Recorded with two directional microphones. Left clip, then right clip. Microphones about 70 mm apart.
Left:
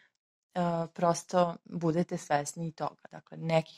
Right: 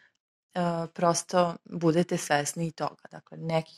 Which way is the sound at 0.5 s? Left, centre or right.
Right.